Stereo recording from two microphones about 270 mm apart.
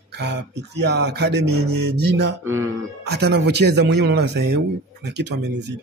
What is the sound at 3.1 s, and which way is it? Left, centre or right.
Speech, right.